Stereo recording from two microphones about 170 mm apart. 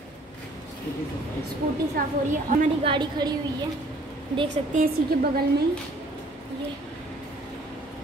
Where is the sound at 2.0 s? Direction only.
55° right (ahead or behind).